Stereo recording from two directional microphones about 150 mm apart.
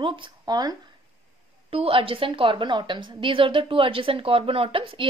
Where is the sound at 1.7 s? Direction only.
40° right (ahead or behind).